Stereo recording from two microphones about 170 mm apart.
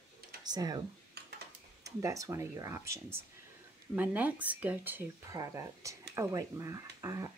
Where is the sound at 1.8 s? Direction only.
20° right (ahead or behind).